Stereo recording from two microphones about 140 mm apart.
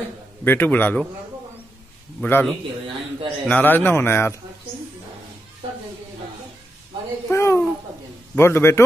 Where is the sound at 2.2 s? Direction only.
10° left (ahead or behind).